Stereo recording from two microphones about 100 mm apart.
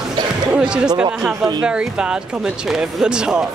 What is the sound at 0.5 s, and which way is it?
Speech, 10° right (ahead or behind).